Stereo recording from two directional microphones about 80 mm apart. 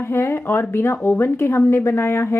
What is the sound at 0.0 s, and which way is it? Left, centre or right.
A woman's voice, left.